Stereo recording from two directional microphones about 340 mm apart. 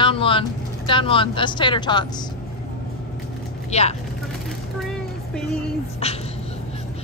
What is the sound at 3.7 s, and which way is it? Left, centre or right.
Speech, centre.